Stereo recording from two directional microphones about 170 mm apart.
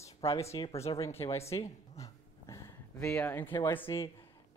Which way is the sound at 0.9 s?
15° left (ahead or behind).